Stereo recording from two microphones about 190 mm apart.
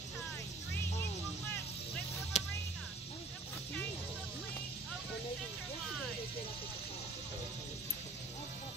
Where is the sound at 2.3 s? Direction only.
40° left (ahead or behind).